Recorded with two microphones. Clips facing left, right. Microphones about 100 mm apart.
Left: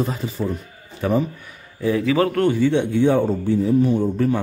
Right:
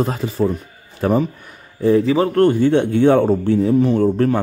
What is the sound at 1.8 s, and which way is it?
Speech, 30° right (ahead or behind).